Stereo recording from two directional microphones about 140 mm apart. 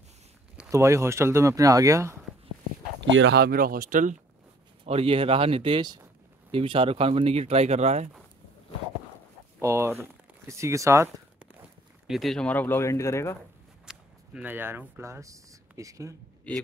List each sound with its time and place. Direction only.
0.7 s speech: 20° right (ahead or behind)
3.4 s speech: 90° right; by 4.2 s 70° right (ahead or behind)
4.8 s speech: 45° right (ahead or behind)
9.6 s speech: 20° right (ahead or behind)
12.1 s speech: centre (ahead or behind); by 13.4 s 20° left (ahead or behind)
13.8 s speech: 10° right (ahead or behind)